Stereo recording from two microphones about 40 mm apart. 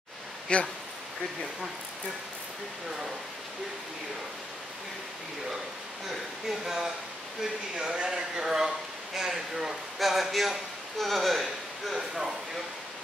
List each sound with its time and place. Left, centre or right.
0.5 s speech: left
6.6 s speech: centre